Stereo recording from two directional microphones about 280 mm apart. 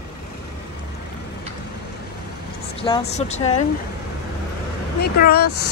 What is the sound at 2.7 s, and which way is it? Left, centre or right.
Speech, centre.